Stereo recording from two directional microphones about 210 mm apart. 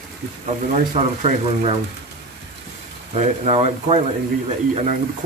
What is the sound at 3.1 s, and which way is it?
Speech, 30° right (ahead or behind).